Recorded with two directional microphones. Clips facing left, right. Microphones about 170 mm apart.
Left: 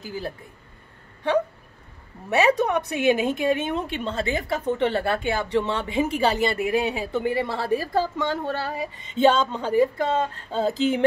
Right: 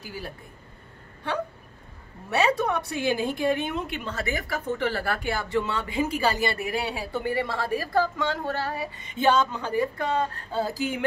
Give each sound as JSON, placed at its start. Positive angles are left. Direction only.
{"t": 2.2, "sound": "speech", "side_deg": 20}